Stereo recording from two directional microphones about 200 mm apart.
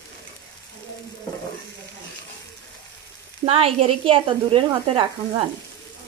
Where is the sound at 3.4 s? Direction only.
30° right (ahead or behind).